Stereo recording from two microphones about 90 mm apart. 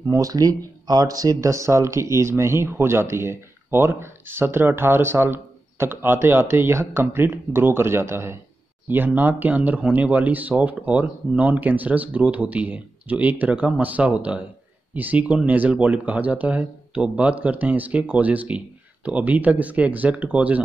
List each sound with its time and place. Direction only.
0.1 s speech: 40° right (ahead or behind); by 20.6 s 15° right (ahead or behind)